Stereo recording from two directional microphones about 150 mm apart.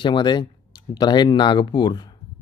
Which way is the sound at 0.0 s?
30° left (ahead or behind).